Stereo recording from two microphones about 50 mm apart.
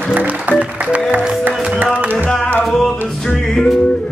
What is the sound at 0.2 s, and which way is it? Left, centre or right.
Speech, right.